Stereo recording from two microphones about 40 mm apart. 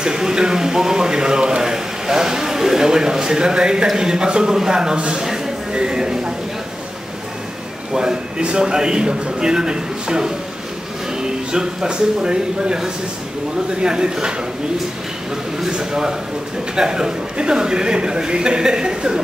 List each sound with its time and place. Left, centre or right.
0.0 s a man's voice: centre
7.9 s a man's voice: right
15.7 s a man's voice: centre